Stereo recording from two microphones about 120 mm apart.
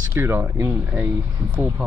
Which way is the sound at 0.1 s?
15° right (ahead or behind).